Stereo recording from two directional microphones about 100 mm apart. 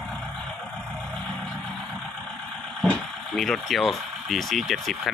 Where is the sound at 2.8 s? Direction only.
5° left (ahead or behind).